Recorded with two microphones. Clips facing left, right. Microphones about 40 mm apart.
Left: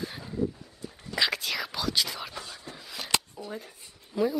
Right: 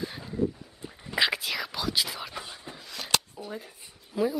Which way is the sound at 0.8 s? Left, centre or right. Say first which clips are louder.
Right 2 dB; centre.